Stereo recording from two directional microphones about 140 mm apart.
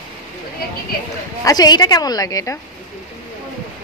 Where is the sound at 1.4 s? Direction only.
25° left (ahead or behind).